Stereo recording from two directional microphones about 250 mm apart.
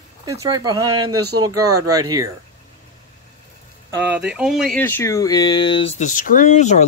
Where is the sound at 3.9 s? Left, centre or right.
Centre; by 6.8 s left.